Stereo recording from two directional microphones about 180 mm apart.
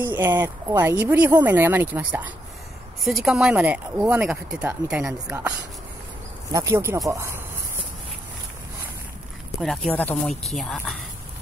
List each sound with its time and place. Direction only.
0.0 s speech: 10° right (ahead or behind)
6.5 s speech: 15° right (ahead or behind)
9.6 s speech: 5° left (ahead or behind)